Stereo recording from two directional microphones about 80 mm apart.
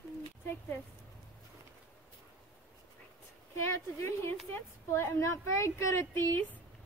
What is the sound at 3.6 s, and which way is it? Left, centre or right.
A woman's voice, left.